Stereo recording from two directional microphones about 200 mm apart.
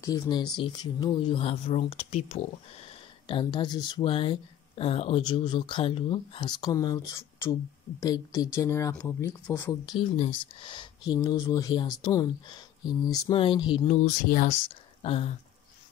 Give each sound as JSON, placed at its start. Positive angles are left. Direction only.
{"t": 0.0, "sound": "speech", "side_deg": 20}
{"t": 14.0, "sound": "speech", "side_deg": 40}
{"t": 15.0, "sound": "a sound", "side_deg": 30}